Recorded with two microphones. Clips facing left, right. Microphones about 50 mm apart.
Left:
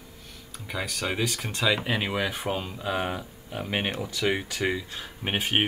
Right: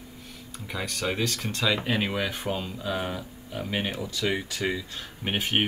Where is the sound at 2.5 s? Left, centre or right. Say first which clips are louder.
Left 1 dB; centre.